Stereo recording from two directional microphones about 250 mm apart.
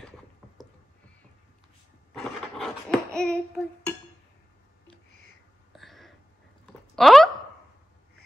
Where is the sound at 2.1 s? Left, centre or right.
Centre.